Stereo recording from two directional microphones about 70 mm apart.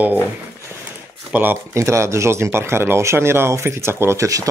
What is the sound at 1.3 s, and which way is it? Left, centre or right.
Speech, right.